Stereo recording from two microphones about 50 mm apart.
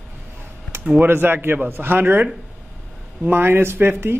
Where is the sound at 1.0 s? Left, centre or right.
Right.